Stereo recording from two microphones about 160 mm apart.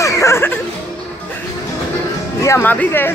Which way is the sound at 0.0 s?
15° left (ahead or behind).